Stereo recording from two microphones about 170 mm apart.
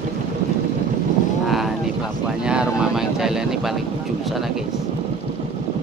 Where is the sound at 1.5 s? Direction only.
Centre (ahead or behind).